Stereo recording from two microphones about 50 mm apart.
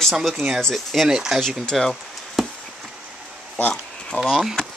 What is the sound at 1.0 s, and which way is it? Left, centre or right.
Speech, centre.